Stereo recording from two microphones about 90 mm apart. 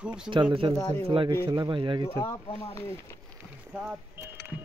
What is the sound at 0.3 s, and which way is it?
Speech, 65° right (ahead or behind).